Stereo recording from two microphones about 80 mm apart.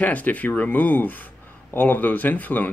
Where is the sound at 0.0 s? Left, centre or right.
Centre.